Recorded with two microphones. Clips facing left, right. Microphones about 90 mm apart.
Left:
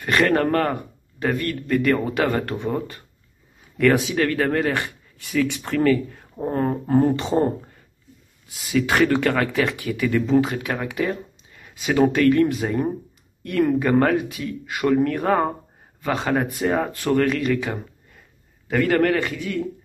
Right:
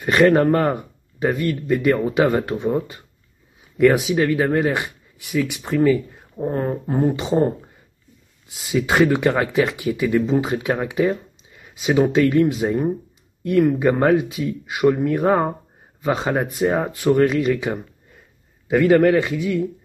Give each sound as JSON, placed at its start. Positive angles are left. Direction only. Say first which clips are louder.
{"t": 0.0, "sound": "speech", "louder": "right 4 dB", "side_deg": -15}
{"t": 3.7, "sound": "speech", "louder": "right 3 dB", "side_deg": -15}
{"t": 10.1, "sound": "speech", "louder": "left 1 dB", "side_deg": -5}
{"t": 10.4, "sound": "a man's voice", "louder": "right 3 dB", "side_deg": -25}